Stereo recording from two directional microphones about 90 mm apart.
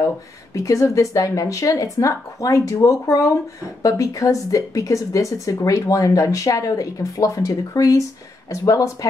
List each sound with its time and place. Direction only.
0.6 s speech: 35° left (ahead or behind)